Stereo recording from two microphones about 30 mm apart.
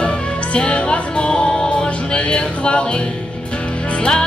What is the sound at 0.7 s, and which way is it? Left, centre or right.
Music, left.